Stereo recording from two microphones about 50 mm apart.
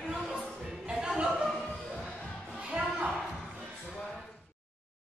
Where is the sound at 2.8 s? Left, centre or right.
Right.